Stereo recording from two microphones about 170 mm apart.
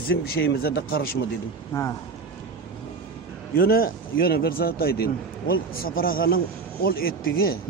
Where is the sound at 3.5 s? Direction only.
60° left (ahead or behind).